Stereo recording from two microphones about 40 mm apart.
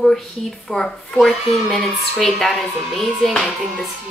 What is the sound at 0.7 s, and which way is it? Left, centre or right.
A woman's voice, centre.